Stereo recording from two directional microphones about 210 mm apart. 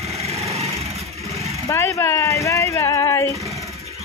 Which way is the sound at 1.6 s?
15° left (ahead or behind).